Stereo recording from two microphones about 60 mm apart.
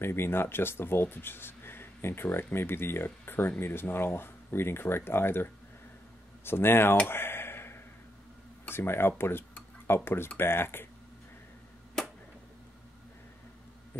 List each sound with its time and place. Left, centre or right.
0.0 s speech: left
7.1 s a sound: left
8.6 s speech: left